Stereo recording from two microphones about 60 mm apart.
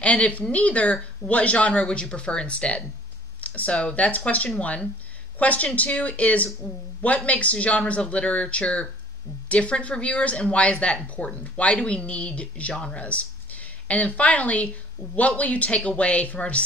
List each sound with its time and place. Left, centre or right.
0.0 s speech: left